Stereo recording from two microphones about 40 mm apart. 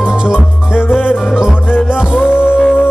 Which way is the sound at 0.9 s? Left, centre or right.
Centre.